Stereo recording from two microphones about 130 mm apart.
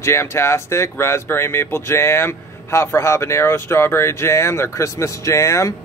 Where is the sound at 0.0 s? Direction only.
20° left (ahead or behind).